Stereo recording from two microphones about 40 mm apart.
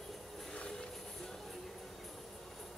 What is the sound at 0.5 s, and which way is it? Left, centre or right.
Vehicle, left.